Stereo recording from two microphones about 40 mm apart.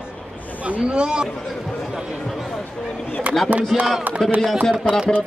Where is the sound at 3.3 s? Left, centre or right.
Right.